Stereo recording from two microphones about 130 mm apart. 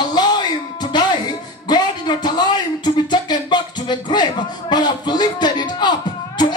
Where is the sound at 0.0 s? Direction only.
35° left (ahead or behind).